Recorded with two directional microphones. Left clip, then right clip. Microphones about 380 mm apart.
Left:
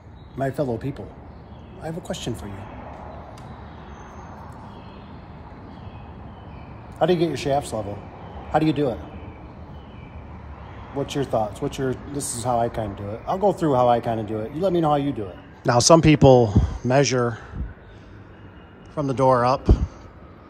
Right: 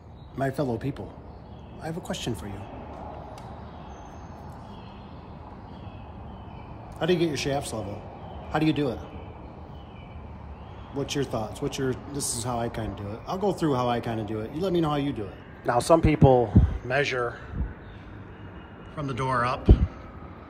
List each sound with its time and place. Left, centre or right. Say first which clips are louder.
0.4 s speech: left 3 dB; centre
7.0 s speech: left 5 dB; centre
11.0 s speech: left 6 dB; centre
15.8 s speech: left 6 dB; left
18.9 s speech: left 8 dB; centre